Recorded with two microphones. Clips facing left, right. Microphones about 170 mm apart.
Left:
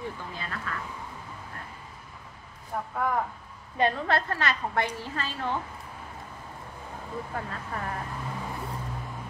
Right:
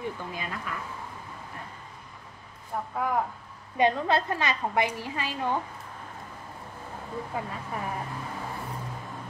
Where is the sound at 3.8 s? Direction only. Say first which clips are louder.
Right 2 dB; 20° right (ahead or behind).